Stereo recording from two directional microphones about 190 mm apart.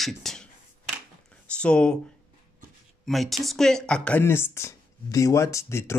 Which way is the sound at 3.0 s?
Centre (ahead or behind).